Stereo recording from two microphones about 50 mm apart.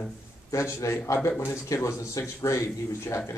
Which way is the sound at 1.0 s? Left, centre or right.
Left.